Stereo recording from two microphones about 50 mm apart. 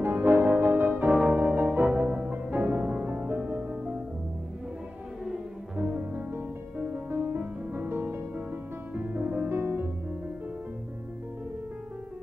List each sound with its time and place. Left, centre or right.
0.0 s music: right
2.3 s music: right
5.8 s music: right
7.3 s music: right
9.5 s music: right